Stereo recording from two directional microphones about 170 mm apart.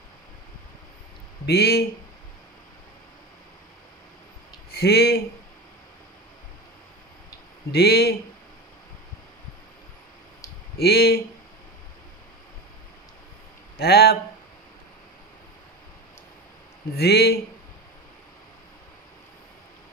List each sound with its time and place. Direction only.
1.4 s a man's voice: 70° left (ahead or behind)
4.6 s speech: 70° left (ahead or behind)
7.7 s a man's voice: 70° left (ahead or behind)
10.8 s a man's voice: 70° left (ahead or behind)
13.7 s a man's voice: 70° left (ahead or behind)
16.9 s a man's voice: 70° left (ahead or behind)